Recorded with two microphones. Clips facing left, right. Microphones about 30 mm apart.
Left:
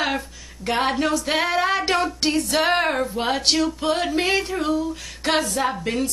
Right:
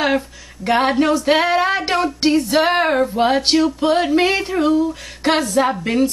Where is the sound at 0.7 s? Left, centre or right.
Centre.